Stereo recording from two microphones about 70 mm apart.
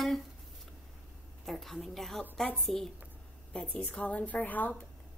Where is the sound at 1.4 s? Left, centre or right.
Centre.